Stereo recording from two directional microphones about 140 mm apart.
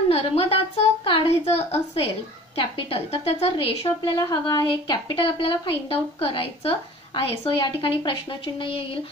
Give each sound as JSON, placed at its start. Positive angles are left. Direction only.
{"t": 0.1, "sound": "a woman's voice", "side_deg": 45}